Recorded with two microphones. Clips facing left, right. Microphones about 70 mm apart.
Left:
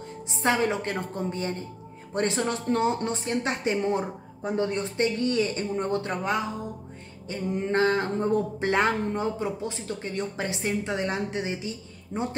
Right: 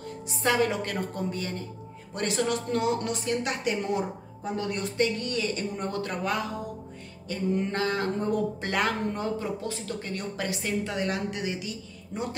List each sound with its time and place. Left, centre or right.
0.3 s speech: left